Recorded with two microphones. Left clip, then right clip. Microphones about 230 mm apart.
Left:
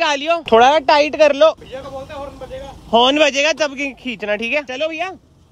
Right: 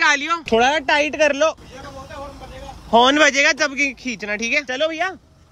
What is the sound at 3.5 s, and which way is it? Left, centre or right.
Speech, centre.